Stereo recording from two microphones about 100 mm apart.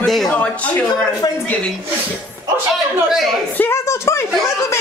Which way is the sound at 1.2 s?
45° left (ahead or behind).